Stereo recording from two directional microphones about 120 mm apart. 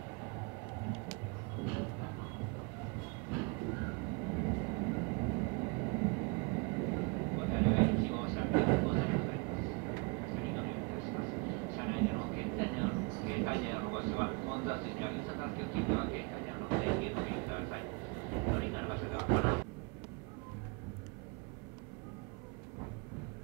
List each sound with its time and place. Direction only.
3.3 s train: 25° right (ahead or behind)